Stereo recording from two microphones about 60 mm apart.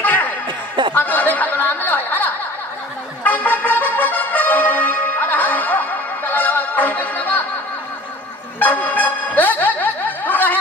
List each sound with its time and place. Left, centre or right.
0.0 s chuckle: left
0.9 s chatter: left
3.3 s music: left
8.5 s music: left